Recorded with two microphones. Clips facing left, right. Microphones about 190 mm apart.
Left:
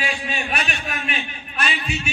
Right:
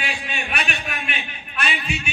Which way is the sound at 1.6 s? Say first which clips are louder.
Left 1 dB; 35° left (ahead or behind).